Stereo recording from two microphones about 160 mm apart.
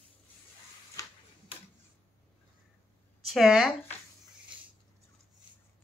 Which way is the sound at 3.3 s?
Centre (ahead or behind).